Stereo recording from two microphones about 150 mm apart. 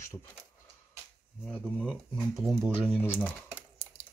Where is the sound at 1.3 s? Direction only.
5° right (ahead or behind).